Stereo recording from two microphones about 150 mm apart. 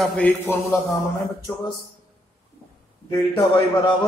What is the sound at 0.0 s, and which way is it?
Speech, 10° left (ahead or behind).